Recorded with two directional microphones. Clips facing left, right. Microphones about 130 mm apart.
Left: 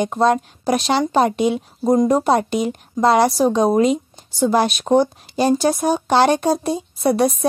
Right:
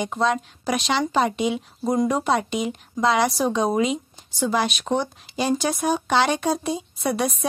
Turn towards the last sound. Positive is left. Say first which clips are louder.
# left 7 dB
turn(degrees=40)  # may be behind; listen again after turning